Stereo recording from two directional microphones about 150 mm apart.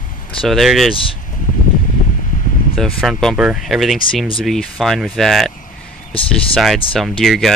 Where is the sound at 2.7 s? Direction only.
Centre (ahead or behind).